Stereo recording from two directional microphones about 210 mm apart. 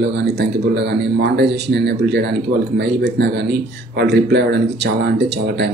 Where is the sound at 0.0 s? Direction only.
55° right (ahead or behind).